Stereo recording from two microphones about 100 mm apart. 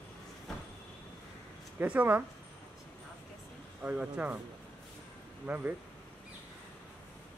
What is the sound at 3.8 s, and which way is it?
Speech, 15° right (ahead or behind).